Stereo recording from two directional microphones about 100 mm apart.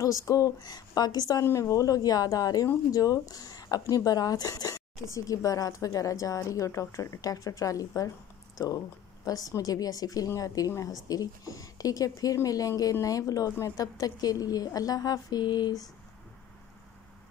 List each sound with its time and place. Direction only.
0.0 s a woman's voice: 35° left (ahead or behind)